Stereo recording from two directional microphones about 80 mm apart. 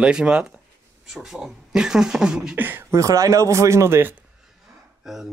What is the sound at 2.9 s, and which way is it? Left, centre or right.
Speech, right.